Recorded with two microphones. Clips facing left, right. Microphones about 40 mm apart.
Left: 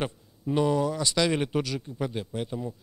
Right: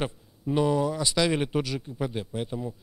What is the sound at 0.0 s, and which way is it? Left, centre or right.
Speech, centre.